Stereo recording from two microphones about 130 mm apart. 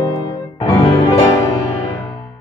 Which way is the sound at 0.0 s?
30° left (ahead or behind).